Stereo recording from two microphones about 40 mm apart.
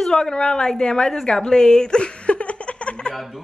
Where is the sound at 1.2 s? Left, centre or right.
Centre.